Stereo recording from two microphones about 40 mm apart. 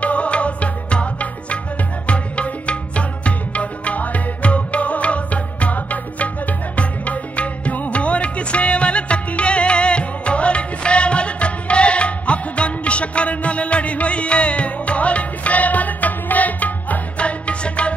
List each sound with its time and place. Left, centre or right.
0.0 s music: left